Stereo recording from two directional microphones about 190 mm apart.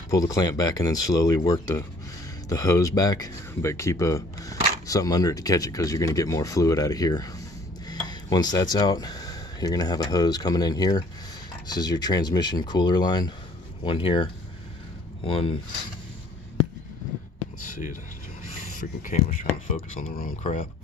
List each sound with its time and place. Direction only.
0.1 s speech: 20° left (ahead or behind)
18.8 s speech: 40° left (ahead or behind)